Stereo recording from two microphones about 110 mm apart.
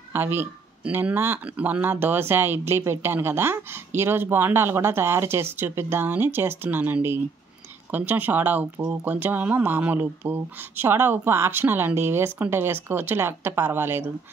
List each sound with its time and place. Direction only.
0.1 s speech: 20° right (ahead or behind)